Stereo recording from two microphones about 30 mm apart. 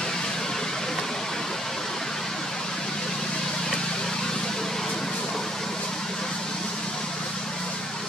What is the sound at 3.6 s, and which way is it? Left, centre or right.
Vehicle, centre.